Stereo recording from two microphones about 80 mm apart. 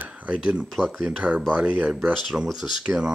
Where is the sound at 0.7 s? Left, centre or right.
Centre.